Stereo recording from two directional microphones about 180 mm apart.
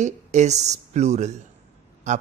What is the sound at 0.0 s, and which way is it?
Speech, 40° right (ahead or behind).